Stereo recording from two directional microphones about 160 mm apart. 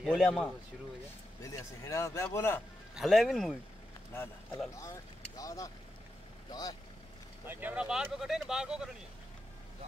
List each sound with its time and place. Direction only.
0.0 s speech: 5° left (ahead or behind)
1.4 s speech: 20° left (ahead or behind)
2.9 s speech: centre (ahead or behind)
4.1 s a man's voice: 15° left (ahead or behind)
7.4 s speech: 10° right (ahead or behind)